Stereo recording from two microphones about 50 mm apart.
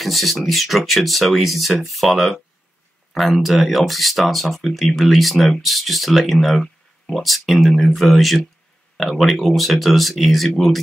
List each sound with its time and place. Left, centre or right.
0.0 s speech: centre